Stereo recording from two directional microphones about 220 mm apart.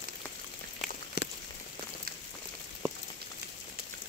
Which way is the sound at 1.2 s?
50° left (ahead or behind).